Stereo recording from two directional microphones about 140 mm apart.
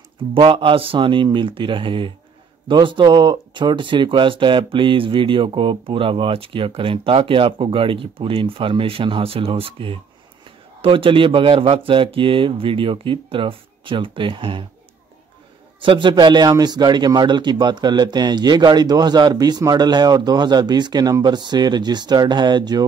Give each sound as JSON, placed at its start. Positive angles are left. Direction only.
{"t": 0.2, "sound": "speech", "side_deg": -40}
{"t": 15.8, "sound": "speech", "side_deg": -35}